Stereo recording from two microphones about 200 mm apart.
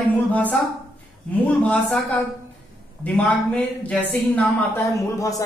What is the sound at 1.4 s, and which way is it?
Speech, 5° left (ahead or behind).